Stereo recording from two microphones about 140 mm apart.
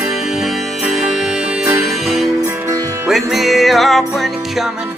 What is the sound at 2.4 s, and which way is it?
Music, 20° right (ahead or behind).